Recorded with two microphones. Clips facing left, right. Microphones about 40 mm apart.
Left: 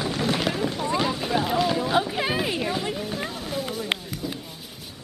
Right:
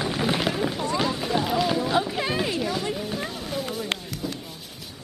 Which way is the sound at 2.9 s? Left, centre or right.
Centre.